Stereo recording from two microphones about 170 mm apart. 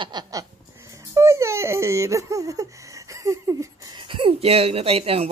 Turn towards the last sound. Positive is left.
turn(degrees=-35)  # may be behind; listen again after turning